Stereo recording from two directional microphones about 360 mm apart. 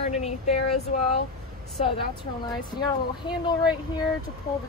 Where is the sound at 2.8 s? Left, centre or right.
Centre.